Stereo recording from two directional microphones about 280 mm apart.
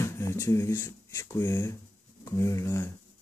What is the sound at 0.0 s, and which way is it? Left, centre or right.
Speech, centre.